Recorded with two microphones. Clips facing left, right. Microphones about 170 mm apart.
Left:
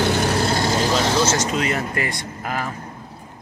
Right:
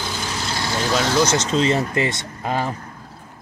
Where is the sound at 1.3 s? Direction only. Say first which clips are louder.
Right 3 dB; 25° right (ahead or behind).